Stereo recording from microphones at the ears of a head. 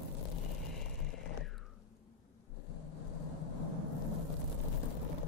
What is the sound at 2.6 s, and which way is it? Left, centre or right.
Vehicle, left.